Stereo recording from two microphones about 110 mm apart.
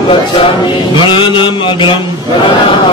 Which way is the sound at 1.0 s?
45° left (ahead or behind).